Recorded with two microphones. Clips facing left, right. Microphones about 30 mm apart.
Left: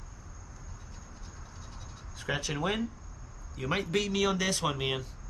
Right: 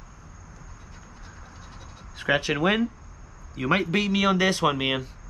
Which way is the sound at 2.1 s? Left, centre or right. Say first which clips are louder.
Right 10 dB; right.